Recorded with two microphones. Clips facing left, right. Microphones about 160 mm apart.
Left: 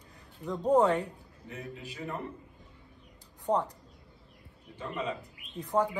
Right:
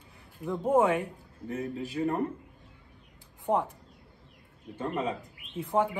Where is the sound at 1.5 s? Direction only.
40° right (ahead or behind).